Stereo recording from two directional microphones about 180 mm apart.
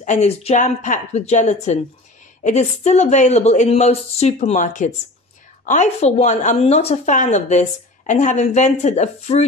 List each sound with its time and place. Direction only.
0.0 s a woman's voice: 40° left (ahead or behind)